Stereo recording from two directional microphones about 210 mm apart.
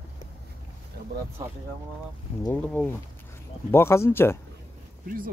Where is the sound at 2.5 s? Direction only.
5° left (ahead or behind).